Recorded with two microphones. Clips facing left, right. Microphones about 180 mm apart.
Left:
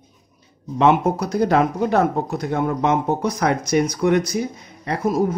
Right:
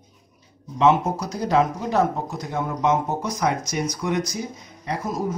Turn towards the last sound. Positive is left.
turn(degrees=60)  # may be behind; listen again after turning